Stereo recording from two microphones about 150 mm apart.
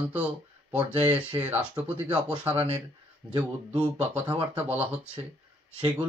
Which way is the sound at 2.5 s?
40° right (ahead or behind).